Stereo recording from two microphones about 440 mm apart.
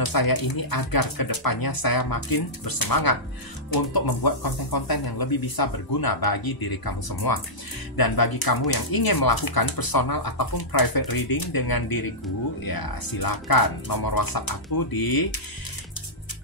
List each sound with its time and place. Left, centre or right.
0.0 s speech: left